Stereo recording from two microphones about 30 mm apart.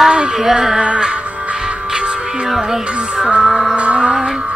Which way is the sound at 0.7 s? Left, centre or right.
Right.